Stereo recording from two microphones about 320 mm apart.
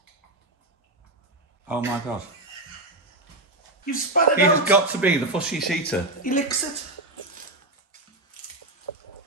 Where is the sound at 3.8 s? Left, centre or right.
Left.